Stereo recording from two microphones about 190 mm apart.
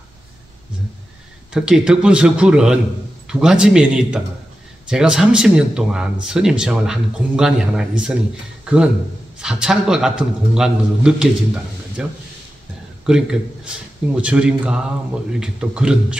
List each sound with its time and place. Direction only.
1.5 s a man's voice: 5° right (ahead or behind)